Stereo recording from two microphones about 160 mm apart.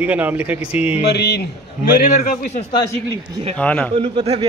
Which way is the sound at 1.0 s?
90° left.